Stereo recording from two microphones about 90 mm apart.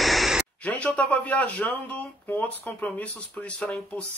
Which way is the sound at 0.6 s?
15° left (ahead or behind).